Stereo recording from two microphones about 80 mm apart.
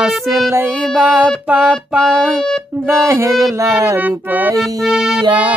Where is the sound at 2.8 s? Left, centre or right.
Right.